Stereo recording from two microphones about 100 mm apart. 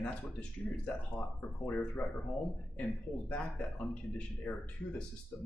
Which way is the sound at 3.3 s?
10° left (ahead or behind).